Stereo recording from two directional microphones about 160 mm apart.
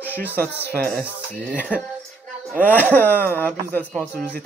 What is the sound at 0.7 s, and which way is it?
Speech, 65° right (ahead or behind).